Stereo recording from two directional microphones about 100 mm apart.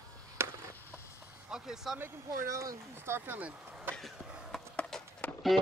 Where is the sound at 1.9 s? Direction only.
25° right (ahead or behind).